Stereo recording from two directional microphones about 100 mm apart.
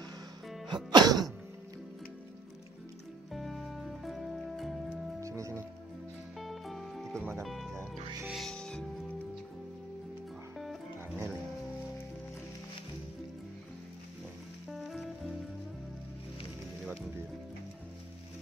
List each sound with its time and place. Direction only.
0.7 s music: 45° right (ahead or behind)
3.3 s music: centre (ahead or behind)
5.2 s music: 30° right (ahead or behind)
6.4 s music: centre (ahead or behind)
10.6 s music: centre (ahead or behind)
14.7 s music: centre (ahead or behind)